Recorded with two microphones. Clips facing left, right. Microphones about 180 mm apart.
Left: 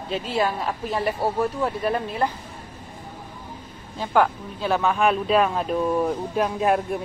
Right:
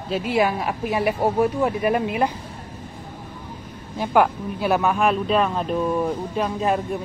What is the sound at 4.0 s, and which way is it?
Speech, 10° right (ahead or behind).